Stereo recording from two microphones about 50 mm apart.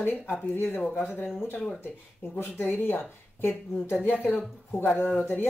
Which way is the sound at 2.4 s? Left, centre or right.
Left.